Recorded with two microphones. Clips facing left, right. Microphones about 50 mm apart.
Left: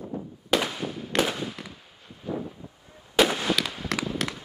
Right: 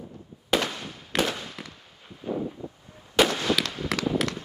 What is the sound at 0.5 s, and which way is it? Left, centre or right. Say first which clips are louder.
Fireworks: left 1 dB; centre.